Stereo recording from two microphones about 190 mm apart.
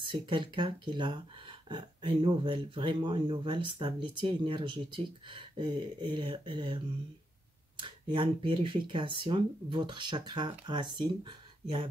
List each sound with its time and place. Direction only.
0.1 s speech: 25° right (ahead or behind)